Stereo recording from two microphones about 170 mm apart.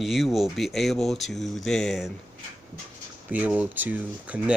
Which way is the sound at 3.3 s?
10° right (ahead or behind).